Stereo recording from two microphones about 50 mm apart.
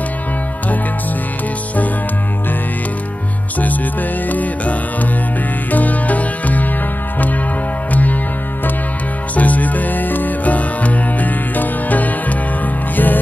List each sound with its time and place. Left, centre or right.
4.3 s music: left
7.9 s music: left
9.3 s music: left